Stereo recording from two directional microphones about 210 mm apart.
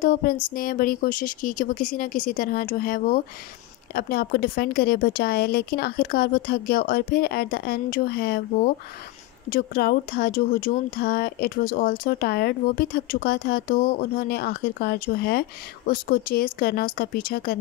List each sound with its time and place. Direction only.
0.0 s a woman's voice: 40° left (ahead or behind)